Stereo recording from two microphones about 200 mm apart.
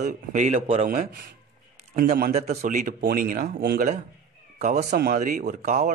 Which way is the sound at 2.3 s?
35° right (ahead or behind).